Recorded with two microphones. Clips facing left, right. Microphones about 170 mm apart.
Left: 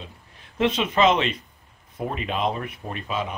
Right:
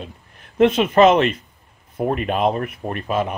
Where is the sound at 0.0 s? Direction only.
55° right (ahead or behind).